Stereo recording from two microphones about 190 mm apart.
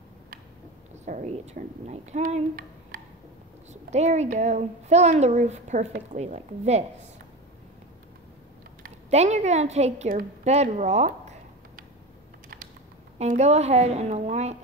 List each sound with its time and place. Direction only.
1.0 s a woman's voice: 40° right (ahead or behind)
3.7 s a woman's voice: 35° right (ahead or behind)
8.8 s a woman's voice: 35° right (ahead or behind)
13.2 s a woman's voice: 35° right (ahead or behind)